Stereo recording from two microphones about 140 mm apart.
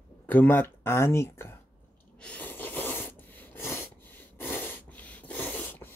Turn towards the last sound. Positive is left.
turn(degrees=15)  # may be behind; listen again after turning